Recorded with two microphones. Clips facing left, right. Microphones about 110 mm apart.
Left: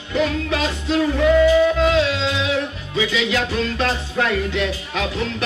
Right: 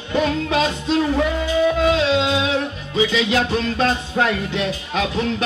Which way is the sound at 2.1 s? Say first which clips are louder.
Right 3 dB; 20° right (ahead or behind).